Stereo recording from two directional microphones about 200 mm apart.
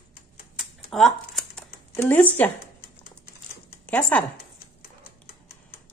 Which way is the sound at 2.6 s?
50° left (ahead or behind).